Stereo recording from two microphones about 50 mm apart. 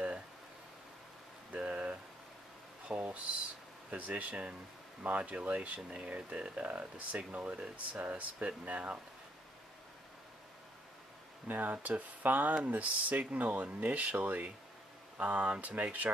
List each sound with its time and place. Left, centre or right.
1.5 s a sound: right
3.9 s speech: right
11.4 s speech: right